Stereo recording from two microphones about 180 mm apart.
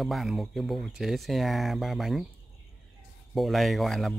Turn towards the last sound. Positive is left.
turn(degrees=0)  # may be behind; listen again after turning